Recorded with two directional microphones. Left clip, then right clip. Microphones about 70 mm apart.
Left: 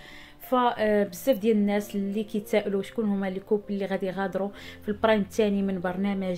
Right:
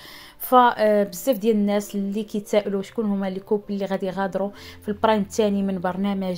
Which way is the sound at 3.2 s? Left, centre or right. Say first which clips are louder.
Right 3 dB; right.